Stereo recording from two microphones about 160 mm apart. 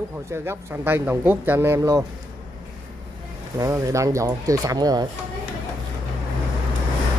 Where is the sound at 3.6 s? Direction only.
20° right (ahead or behind).